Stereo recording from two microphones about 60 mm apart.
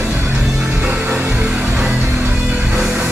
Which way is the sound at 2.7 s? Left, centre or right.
Centre.